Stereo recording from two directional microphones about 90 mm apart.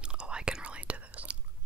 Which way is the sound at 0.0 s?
10° right (ahead or behind).